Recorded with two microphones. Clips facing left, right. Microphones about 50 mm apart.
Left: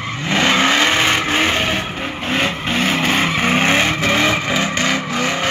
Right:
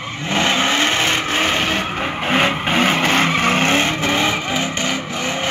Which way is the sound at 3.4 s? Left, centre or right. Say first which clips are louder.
Left 1 dB; centre.